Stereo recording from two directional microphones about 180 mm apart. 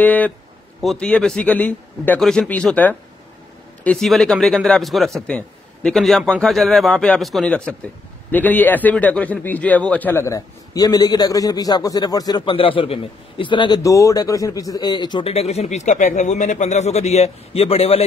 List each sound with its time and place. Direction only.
0.0 s a man's voice: 10° left (ahead or behind); by 18.0 s 35° left (ahead or behind)